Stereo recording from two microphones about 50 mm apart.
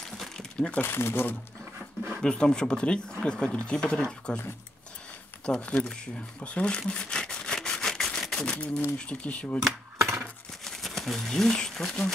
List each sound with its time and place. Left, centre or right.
0.7 s speech: left
2.2 s speech: centre
5.4 s speech: left
6.9 s a sound: centre
8.5 s speech: centre
9.9 s coin: right
10.6 s speech: centre